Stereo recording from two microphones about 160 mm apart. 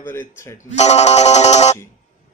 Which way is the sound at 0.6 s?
45° left (ahead or behind).